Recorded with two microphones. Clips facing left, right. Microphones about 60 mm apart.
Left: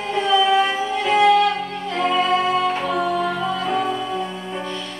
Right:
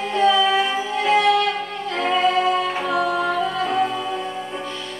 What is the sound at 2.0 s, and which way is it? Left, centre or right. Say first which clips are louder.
Music: even; centre.